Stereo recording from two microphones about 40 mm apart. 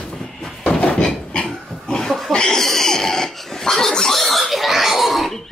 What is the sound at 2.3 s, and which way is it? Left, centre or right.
Dog, centre.